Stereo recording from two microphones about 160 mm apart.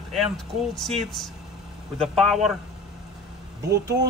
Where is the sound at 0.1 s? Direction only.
Centre (ahead or behind).